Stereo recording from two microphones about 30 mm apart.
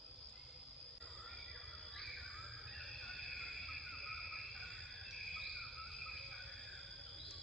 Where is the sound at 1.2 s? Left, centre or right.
Centre.